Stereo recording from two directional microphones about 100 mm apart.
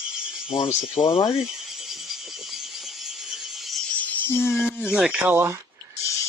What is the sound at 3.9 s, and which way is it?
Music, 15° left (ahead or behind).